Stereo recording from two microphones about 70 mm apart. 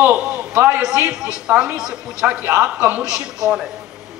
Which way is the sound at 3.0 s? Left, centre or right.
Left.